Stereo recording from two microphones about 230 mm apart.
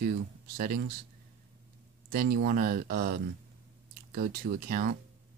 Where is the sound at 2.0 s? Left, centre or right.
Right.